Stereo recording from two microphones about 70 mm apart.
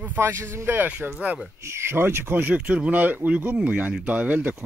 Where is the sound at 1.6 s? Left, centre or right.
Right.